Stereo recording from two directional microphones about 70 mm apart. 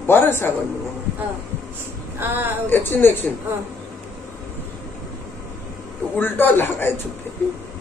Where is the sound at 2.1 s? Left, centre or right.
Right.